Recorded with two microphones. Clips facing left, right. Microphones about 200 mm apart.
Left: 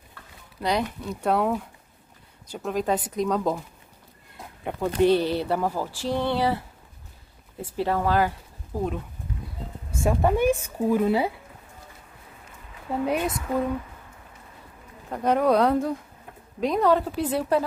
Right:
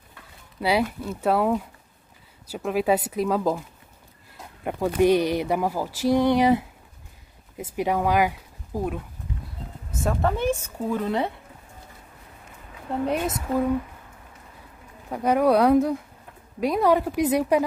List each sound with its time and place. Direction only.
0.6 s speech: 5° right (ahead or behind)
7.7 s speech: 15° right (ahead or behind)
9.8 s speech: 10° left (ahead or behind)
13.0 s speech: 5° left (ahead or behind)
15.0 s speech: 5° right (ahead or behind)